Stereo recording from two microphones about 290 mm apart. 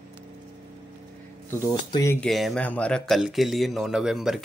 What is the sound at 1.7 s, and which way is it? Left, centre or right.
Speech, centre.